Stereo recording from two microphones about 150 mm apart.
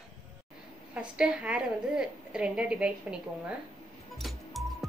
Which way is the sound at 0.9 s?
5° right (ahead or behind).